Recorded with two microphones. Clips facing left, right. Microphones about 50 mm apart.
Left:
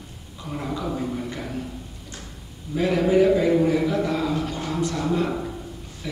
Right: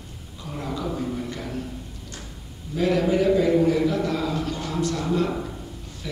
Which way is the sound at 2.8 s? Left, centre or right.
Centre.